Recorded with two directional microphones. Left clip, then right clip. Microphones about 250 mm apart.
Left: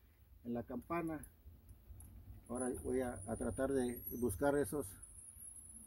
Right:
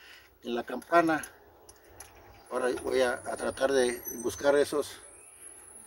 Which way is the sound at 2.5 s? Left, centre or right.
Centre.